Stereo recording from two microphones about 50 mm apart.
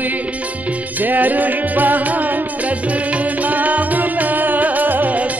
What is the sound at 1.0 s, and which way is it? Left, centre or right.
Music, right.